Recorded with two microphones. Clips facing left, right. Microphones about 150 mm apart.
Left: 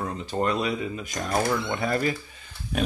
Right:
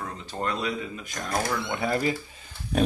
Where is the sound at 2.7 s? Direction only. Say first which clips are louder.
Right 3 dB; 35° right (ahead or behind).